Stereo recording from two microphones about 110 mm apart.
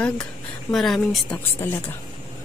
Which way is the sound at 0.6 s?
Centre (ahead or behind).